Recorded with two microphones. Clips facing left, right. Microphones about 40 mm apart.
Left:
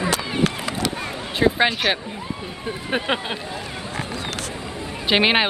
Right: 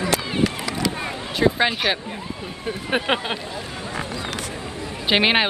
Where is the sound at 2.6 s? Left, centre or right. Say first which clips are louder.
Right 1 dB; centre.